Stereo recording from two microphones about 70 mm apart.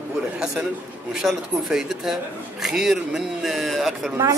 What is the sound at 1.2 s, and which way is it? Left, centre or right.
Speech, centre.